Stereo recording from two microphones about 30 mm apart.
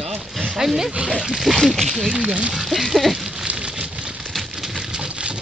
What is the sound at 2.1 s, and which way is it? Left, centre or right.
Speech, right.